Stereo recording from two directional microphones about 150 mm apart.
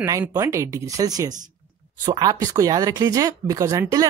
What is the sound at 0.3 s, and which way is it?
Speech, 20° right (ahead or behind).